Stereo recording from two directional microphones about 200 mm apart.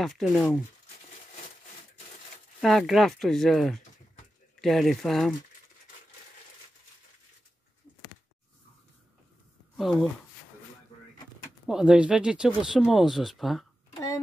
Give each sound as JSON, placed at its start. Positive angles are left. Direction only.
{"t": 0.0, "sound": "speech", "side_deg": 0}
{"t": 2.6, "sound": "speech", "side_deg": 0}
{"t": 9.8, "sound": "speech", "side_deg": 0}
{"t": 11.6, "sound": "speech", "side_deg": -5}
{"t": 13.9, "sound": "a sound", "side_deg": 15}